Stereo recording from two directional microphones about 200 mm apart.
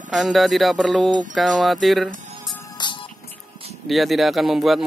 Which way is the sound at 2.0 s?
40° right (ahead or behind).